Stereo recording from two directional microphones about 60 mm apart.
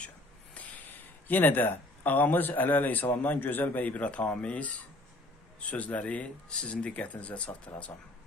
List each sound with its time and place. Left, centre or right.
0.6 s speech: left